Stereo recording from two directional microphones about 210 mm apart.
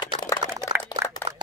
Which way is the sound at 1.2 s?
30° right (ahead or behind).